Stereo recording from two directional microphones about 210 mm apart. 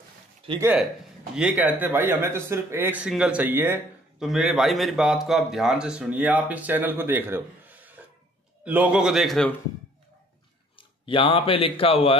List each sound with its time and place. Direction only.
1.3 s a man's voice: 5° right (ahead or behind)
10.8 s speech: 25° left (ahead or behind)